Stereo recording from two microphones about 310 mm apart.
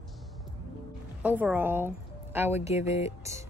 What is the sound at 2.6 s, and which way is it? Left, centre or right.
Speech, left.